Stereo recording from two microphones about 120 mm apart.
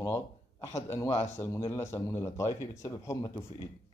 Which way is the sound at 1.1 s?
70° left (ahead or behind).